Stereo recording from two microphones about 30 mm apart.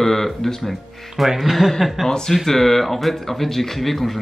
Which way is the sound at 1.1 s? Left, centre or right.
Centre.